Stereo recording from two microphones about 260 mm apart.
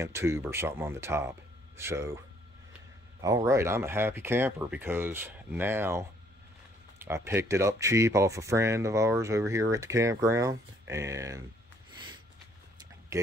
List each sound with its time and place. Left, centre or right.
0.0 s speech: centre
3.2 s speech: centre
11.9 s a sound: centre
13.1 s speech: centre